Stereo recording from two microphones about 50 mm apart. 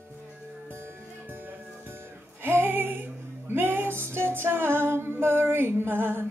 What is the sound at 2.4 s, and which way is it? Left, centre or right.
Music, right.